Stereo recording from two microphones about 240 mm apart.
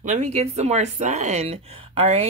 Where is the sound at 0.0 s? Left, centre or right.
Right.